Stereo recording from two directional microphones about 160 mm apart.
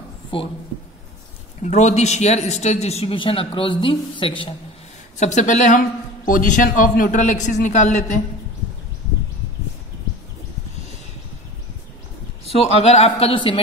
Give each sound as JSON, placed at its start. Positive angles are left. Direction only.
{"t": 0.3, "sound": "a man's voice", "side_deg": 35}
{"t": 1.6, "sound": "a man's voice", "side_deg": 45}
{"t": 5.2, "sound": "a man's voice", "side_deg": 50}
{"t": 12.4, "sound": "a man's voice", "side_deg": 40}